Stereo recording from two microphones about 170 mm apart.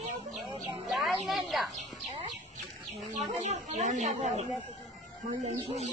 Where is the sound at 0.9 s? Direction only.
Centre (ahead or behind).